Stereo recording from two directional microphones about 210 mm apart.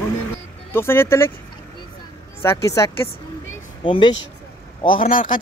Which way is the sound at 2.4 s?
15° left (ahead or behind).